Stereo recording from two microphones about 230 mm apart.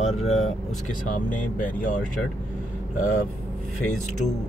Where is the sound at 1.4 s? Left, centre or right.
Left.